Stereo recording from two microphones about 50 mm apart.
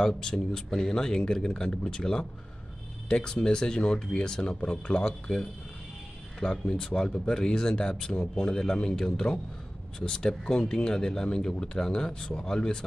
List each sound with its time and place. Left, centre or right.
0.0 s speech: centre
5.0 s speech: centre